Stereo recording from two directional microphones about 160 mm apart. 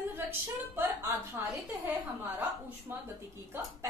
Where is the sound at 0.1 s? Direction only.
15° right (ahead or behind).